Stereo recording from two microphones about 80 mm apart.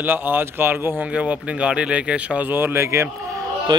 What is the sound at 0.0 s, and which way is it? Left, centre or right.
Speech, right.